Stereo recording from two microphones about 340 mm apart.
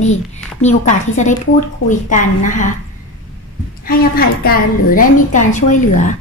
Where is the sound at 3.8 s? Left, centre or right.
Left.